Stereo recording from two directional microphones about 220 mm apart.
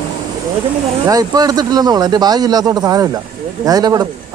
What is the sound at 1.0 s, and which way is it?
Speech, 15° right (ahead or behind).